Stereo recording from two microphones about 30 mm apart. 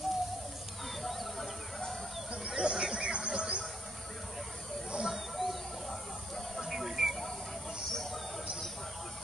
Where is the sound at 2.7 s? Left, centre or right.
Centre.